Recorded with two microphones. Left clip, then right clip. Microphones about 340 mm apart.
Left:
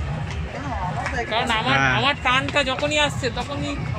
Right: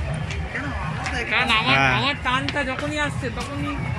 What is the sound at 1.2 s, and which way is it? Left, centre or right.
Speech, centre.